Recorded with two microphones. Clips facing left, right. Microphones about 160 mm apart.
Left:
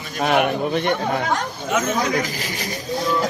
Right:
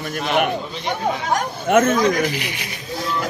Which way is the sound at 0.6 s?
60° left (ahead or behind).